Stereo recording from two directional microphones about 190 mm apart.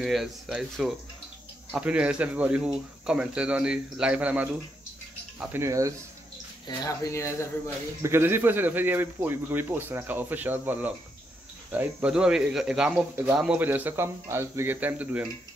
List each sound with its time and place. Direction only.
0.0 s speech: centre (ahead or behind)
6.8 s speech: 20° left (ahead or behind)
8.0 s speech: 10° right (ahead or behind)